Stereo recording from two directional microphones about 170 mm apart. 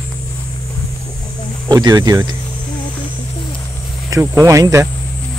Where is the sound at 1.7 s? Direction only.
25° right (ahead or behind).